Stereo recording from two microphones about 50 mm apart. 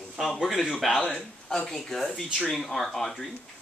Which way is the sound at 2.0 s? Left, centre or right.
Centre.